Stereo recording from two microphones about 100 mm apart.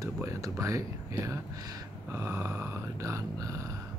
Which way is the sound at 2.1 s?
25° right (ahead or behind).